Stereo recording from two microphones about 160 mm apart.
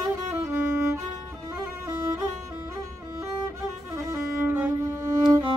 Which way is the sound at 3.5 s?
20° right (ahead or behind).